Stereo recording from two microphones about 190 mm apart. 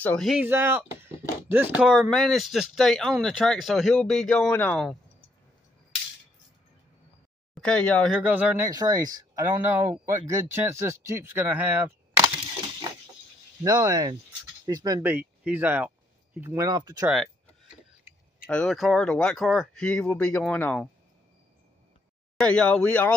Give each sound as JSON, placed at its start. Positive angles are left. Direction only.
{"t": 0.0, "sound": "speech", "side_deg": 5}
{"t": 0.4, "sound": "speech", "side_deg": -10}
{"t": 7.6, "sound": "speech", "side_deg": 5}
{"t": 8.2, "sound": "speech", "side_deg": -10}
{"t": 8.6, "sound": "speech", "side_deg": -20}
{"t": 13.7, "sound": "speech", "side_deg": -20}
{"t": 18.5, "sound": "speech", "side_deg": 5}
{"t": 22.4, "sound": "speech", "side_deg": 5}